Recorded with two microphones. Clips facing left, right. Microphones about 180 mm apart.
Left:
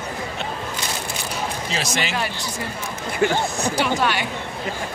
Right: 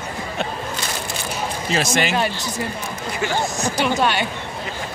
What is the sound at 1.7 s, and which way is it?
Speech, 50° right (ahead or behind).